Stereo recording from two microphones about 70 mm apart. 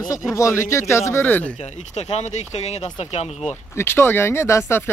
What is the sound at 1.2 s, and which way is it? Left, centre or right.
Speech, left.